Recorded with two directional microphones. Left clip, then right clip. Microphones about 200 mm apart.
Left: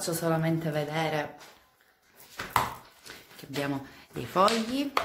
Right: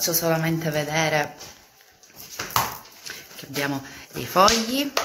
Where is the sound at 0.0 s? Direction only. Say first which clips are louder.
Right 6 dB; 5° left (ahead or behind).